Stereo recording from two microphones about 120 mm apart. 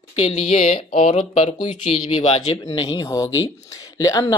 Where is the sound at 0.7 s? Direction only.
50° left (ahead or behind).